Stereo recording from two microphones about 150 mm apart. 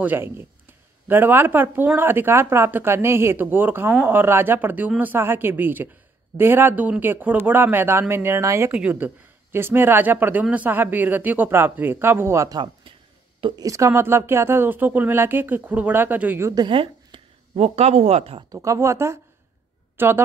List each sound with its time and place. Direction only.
0.0 s speech: 15° right (ahead or behind)
16.6 s speech: 35° right (ahead or behind)
18.5 s speech: 20° right (ahead or behind)